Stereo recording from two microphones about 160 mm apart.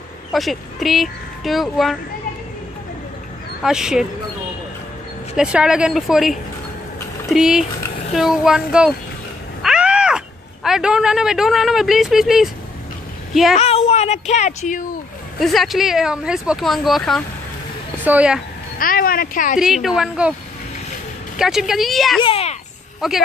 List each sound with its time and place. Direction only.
0.3 s speech: centre (ahead or behind)
3.6 s speech: 5° right (ahead or behind)
5.3 s speech: 5° right (ahead or behind)
9.6 s cat: 5° right (ahead or behind)
13.3 s a woman's voice: centre (ahead or behind)
13.6 s speech: 40° left (ahead or behind)
15.3 s speech: centre (ahead or behind)
18.8 s speech: 60° left (ahead or behind)
19.6 s speech: 5° right (ahead or behind)
21.4 s speech: 5° right (ahead or behind)
22.2 s speech: 40° left (ahead or behind)
22.9 s speech: centre (ahead or behind)